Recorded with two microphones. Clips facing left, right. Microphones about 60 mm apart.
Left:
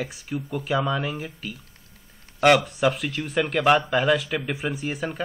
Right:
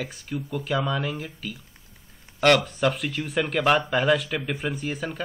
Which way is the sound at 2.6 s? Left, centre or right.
Centre.